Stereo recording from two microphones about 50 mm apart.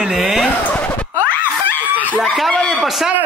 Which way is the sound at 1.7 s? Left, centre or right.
Left.